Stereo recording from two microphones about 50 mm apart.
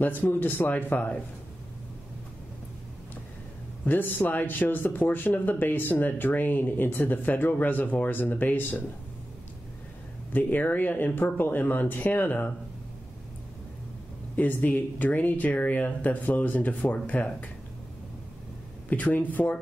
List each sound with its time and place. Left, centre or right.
0.0 s speech: left
3.8 s speech: left
10.3 s speech: left
14.3 s speech: left
18.9 s speech: left